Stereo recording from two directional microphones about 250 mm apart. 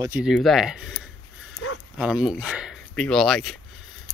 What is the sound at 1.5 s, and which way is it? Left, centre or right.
Dog, left.